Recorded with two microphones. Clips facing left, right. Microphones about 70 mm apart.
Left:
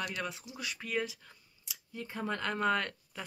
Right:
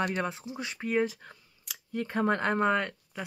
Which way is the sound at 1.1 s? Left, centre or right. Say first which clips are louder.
Right 6 dB; right.